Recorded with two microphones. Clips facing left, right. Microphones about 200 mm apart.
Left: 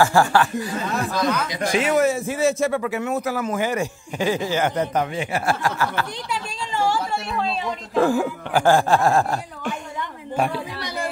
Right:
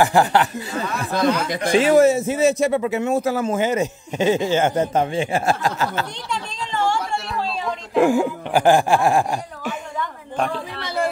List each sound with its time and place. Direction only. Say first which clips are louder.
0.0 s a man's voice: right 1 dB; 20° right (ahead or behind)
6.7 s a sound: even; 5° left (ahead or behind)
7.9 s speech: right 3 dB; 15° right (ahead or behind)
10.3 s a woman's voice: left 1 dB; 10° left (ahead or behind)